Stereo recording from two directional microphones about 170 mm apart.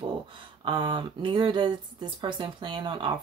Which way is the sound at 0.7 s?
25° right (ahead or behind).